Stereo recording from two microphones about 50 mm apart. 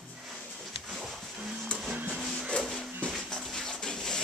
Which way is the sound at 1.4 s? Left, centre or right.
Right.